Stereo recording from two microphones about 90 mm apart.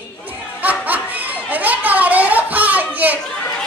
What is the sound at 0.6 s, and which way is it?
Snicker, 20° right (ahead or behind).